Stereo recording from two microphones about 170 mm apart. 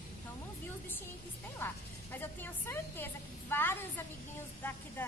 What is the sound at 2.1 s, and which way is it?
A woman's voice, 15° left (ahead or behind).